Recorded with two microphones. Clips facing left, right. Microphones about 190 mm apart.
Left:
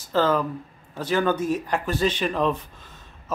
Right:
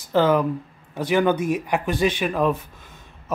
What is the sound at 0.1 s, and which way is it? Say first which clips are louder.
Speech: right 3 dB; 15° right (ahead or behind).